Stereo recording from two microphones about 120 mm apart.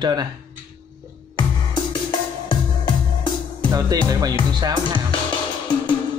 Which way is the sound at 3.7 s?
30° right (ahead or behind).